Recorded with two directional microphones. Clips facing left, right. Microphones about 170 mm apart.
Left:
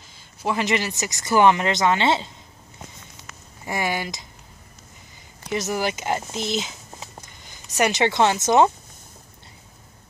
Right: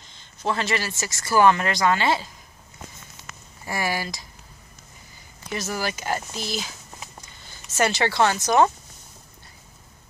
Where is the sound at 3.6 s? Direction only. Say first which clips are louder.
Left 1 dB; 20° left (ahead or behind).